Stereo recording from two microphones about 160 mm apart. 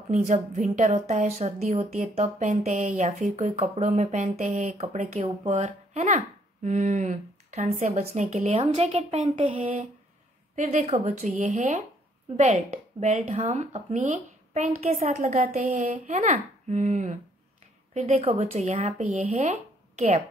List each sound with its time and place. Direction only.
0.2 s a woman's voice: 50° right (ahead or behind)
9.6 s a woman's voice: 45° right (ahead or behind)